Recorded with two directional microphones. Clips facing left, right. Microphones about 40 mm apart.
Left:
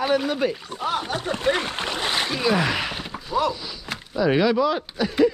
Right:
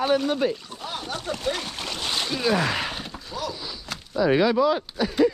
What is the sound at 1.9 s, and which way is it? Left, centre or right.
Boat, left.